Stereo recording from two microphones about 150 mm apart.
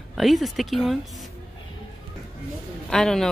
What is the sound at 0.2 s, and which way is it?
Speech, centre (ahead or behind).